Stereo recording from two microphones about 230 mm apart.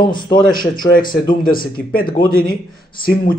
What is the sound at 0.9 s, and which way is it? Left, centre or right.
A man's voice, left.